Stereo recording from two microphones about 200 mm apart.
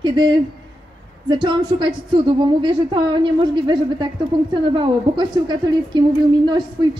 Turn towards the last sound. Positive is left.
turn(degrees=-20)  # may be behind; listen again after turning